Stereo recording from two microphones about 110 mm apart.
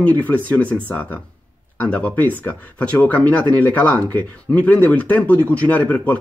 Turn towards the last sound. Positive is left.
turn(degrees=15)  # may be behind; listen again after turning